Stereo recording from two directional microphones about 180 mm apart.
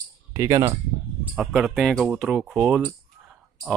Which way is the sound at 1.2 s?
5° right (ahead or behind).